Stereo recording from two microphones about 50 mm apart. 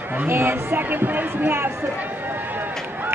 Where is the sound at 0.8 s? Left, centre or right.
Right.